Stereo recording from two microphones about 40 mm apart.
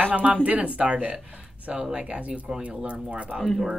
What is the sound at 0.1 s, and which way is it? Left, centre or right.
Speech, right.